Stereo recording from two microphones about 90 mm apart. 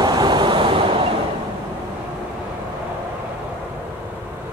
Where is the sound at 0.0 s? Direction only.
50° right (ahead or behind); by 1.1 s 90° right.